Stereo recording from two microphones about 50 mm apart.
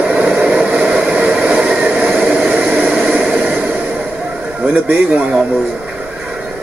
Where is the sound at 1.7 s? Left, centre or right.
Centre.